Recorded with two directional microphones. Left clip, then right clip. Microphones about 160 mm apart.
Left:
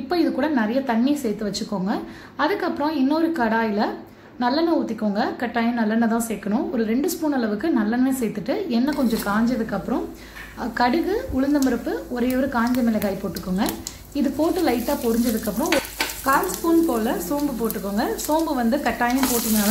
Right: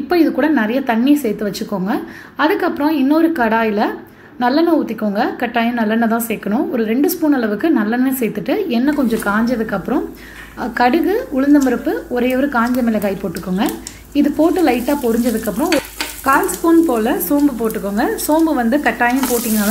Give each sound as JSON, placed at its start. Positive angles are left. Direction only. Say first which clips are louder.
{"t": 0.1, "sound": "a woman's voice", "louder": "right 7 dB", "side_deg": -15}
{"t": 14.1, "sound": "a woman's voice", "louder": "right 8 dB", "side_deg": -20}
{"t": 16.3, "sound": "speech", "louder": "right 7 dB", "side_deg": -20}